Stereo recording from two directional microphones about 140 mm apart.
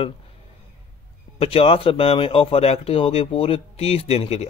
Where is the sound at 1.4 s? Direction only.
45° left (ahead or behind).